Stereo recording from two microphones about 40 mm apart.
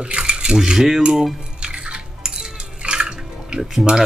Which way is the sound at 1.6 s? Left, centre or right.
Right.